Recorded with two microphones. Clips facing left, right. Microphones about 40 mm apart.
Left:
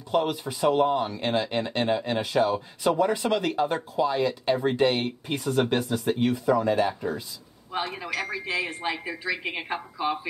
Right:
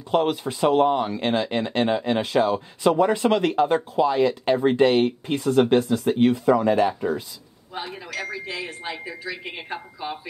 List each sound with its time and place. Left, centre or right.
0.1 s speech: right
3.0 s speech: right
7.8 s speech: centre